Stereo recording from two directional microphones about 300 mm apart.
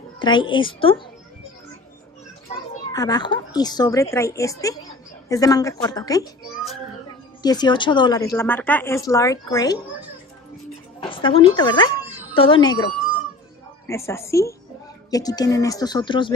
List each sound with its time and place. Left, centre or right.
0.2 s speech: centre
2.9 s speech: centre
7.4 s speech: centre
11.0 s speech: centre